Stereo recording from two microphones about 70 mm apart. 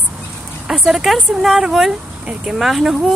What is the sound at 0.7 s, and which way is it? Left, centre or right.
Speech, centre.